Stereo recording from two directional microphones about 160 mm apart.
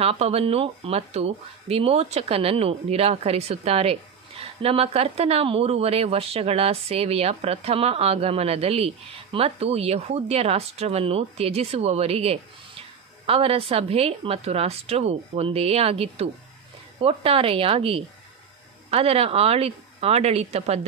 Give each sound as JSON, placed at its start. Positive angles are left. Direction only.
{"t": 0.0, "sound": "speech", "side_deg": -40}